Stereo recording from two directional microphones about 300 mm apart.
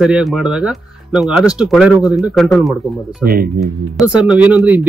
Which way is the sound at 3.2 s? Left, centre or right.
Right.